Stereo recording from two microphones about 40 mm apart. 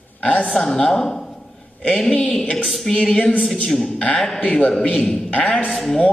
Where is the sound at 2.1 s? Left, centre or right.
Left.